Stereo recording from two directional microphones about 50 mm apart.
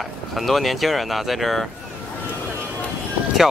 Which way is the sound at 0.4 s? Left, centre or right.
Centre.